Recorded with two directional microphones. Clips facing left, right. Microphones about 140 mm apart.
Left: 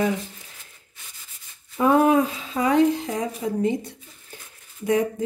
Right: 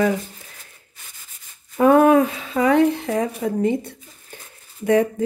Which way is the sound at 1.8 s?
60° right (ahead or behind).